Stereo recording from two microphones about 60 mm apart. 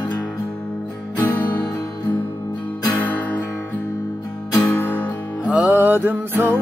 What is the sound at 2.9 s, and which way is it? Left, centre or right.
Guitar, left.